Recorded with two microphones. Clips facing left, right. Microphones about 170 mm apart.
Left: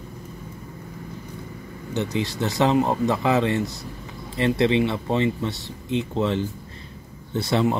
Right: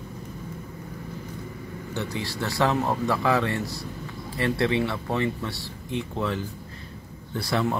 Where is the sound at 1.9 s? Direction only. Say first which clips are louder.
Left 6 dB; 20° left (ahead or behind).